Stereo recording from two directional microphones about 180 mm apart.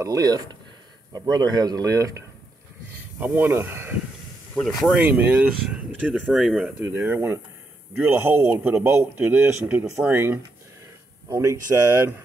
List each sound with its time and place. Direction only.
0.0 s speech: 20° right (ahead or behind)
4.6 s speech: 5° left (ahead or behind)
4.9 s a man's voice: 10° right (ahead or behind)